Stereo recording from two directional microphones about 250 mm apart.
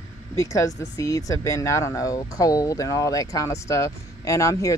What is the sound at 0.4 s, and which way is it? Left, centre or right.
Speech, centre.